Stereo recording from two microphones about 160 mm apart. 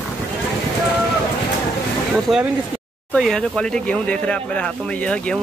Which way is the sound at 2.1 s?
5° right (ahead or behind).